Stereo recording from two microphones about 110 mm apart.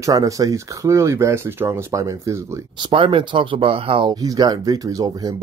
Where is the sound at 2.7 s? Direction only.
50° right (ahead or behind).